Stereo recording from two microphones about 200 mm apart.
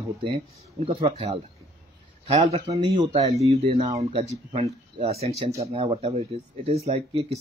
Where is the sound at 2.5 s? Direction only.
30° right (ahead or behind).